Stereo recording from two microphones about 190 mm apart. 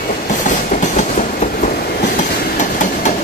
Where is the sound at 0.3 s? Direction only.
40° left (ahead or behind).